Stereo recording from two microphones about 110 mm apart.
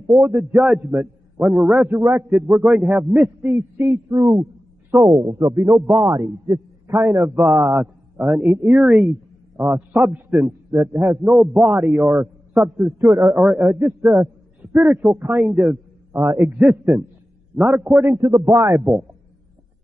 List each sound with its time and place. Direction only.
0.0 s a man's voice: 25° right (ahead or behind)
17.6 s a man's voice: 10° right (ahead or behind)
18.1 s a man's voice: 30° right (ahead or behind)